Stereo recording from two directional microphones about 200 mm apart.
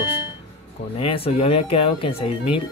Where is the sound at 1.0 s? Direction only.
30° left (ahead or behind).